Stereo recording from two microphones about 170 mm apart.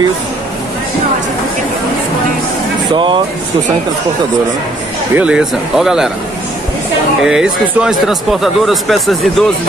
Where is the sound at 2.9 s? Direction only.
30° right (ahead or behind).